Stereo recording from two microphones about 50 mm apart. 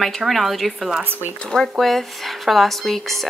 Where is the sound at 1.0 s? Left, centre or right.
Right.